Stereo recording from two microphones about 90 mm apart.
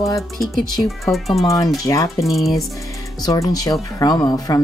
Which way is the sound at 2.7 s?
40° left (ahead or behind).